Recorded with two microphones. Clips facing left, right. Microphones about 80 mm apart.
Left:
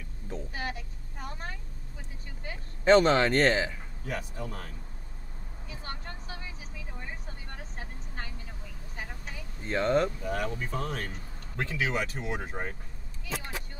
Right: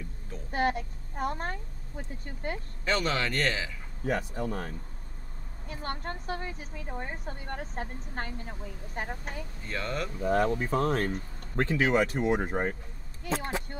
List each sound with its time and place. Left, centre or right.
0.5 s speech: right
2.8 s speech: left
4.0 s a woman's voice: right
9.7 s speech: left
10.2 s a woman's voice: right